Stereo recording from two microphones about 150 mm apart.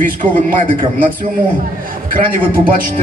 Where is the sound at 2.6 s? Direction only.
70° right (ahead or behind).